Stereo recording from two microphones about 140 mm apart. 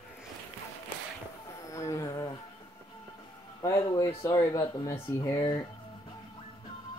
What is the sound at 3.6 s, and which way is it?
Speech, 25° left (ahead or behind).